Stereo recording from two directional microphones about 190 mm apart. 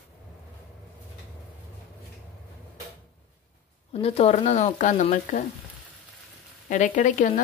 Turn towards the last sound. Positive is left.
turn(degrees=40)  # may be behind; listen again after turning